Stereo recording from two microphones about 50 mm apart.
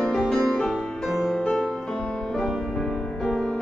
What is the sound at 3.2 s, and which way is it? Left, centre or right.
Music, centre.